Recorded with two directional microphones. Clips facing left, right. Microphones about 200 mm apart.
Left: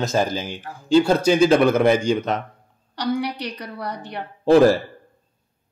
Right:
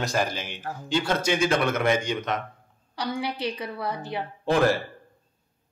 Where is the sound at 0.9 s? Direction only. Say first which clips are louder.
Left 9 dB; 35° left (ahead or behind).